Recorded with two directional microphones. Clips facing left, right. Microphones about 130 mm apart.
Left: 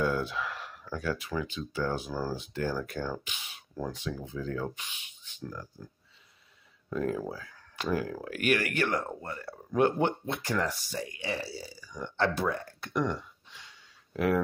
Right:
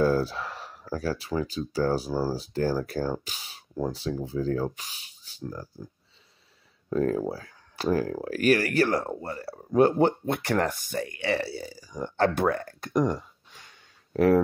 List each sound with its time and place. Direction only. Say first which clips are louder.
0.0 s speech: right 6 dB; 35° right (ahead or behind)
6.9 s speech: right 6 dB; 40° right (ahead or behind)
10.3 s speech: right 5 dB; 60° right (ahead or behind); by 12.3 s 40° right (ahead or behind)
12.4 s speech: right 6 dB; 55° right (ahead or behind)
12.8 s a sound: right 5 dB; 40° right (ahead or behind)